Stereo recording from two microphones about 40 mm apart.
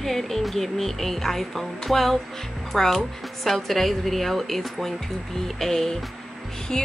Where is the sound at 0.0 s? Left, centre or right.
Centre.